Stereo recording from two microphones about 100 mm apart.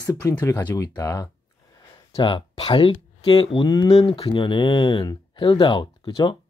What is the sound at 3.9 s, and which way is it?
Speech, 75° left (ahead or behind).